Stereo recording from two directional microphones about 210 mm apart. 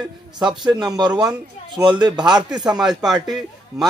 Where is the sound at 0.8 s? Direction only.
20° right (ahead or behind).